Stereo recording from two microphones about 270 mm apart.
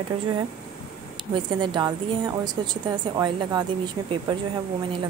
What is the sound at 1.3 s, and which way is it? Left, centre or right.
A woman's voice, centre.